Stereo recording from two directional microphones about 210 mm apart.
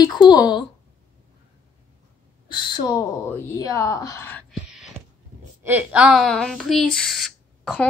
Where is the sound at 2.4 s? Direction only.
20° left (ahead or behind).